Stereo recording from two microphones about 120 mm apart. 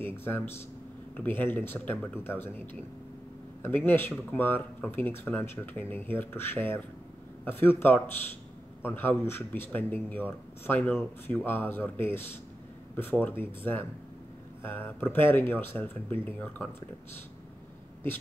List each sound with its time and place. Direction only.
0.0 s speech: 20° left (ahead or behind)